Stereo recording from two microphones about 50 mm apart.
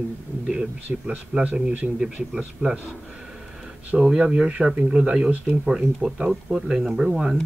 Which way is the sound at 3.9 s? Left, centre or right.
Centre.